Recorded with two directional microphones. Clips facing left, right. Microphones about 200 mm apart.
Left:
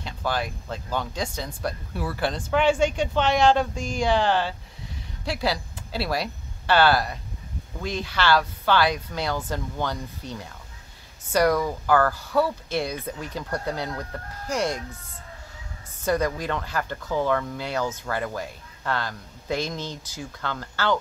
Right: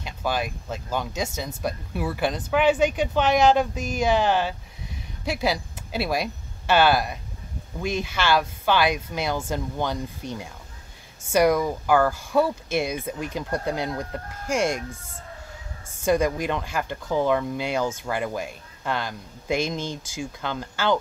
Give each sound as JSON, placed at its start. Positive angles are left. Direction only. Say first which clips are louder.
{"t": 0.0, "sound": "speech", "louder": "right 1 dB", "side_deg": -15}
{"t": 16.1, "sound": "speech", "louder": "right 2 dB", "side_deg": -15}